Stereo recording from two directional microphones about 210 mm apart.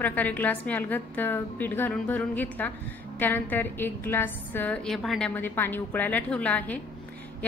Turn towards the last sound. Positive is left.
turn(degrees=5)  # may be behind; listen again after turning